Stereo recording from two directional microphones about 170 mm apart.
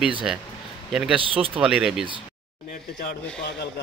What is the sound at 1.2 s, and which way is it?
Speech, 30° right (ahead or behind).